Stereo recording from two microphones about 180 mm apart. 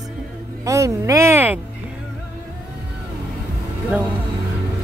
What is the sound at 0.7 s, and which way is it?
Music, 15° right (ahead or behind).